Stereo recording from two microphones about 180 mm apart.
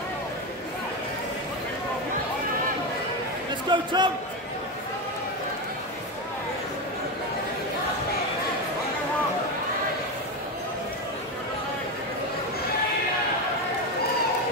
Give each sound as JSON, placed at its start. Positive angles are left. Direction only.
{"t": 3.6, "sound": "a man's voice", "side_deg": -25}